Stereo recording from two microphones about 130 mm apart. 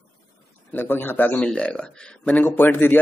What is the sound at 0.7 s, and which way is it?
A man's voice, 15° left (ahead or behind).